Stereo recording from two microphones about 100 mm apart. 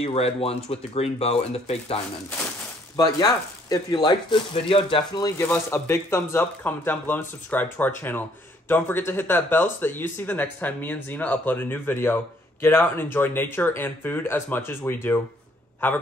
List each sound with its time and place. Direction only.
0.0 s speech: 80° left
3.0 s speech: 40° left (ahead or behind)
4.0 s speech: 55° left (ahead or behind)
5.4 s speech: 25° left (ahead or behind)